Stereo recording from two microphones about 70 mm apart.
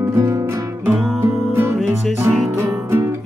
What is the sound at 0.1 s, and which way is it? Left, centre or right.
Music, right.